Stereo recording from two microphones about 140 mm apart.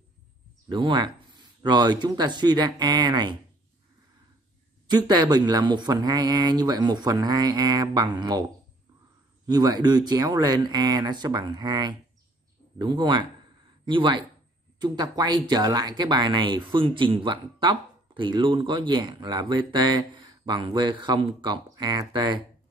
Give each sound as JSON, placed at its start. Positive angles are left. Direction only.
{"t": 0.7, "sound": "speech", "side_deg": -35}
{"t": 4.8, "sound": "speech", "side_deg": -30}
{"t": 9.5, "sound": "speech", "side_deg": -30}